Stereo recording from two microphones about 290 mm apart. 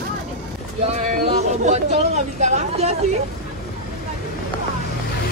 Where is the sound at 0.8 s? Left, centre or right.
Right.